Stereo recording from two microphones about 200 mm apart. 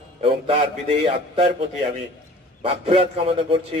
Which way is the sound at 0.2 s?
30° right (ahead or behind).